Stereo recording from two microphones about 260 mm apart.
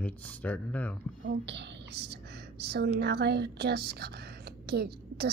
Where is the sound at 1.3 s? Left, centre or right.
Right.